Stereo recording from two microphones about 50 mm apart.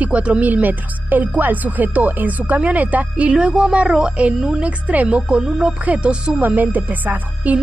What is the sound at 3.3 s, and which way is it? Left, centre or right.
A woman's voice, centre.